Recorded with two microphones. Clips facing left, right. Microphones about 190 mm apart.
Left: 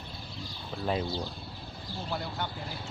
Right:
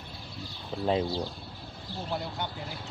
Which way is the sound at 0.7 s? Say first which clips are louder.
Right 4 dB; 25° right (ahead or behind).